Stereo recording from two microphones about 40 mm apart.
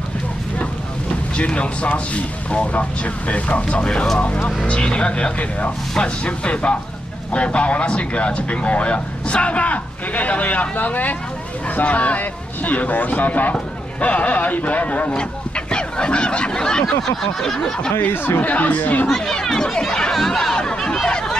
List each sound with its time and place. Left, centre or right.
1.3 s speech: left
17.0 s a sound: centre
17.6 s speech: centre
18.1 s speech: left
18.4 s speech: left
19.0 s a sound: centre
19.3 s chatter: centre